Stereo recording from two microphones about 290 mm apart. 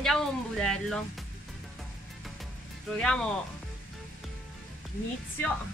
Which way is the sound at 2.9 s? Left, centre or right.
Centre.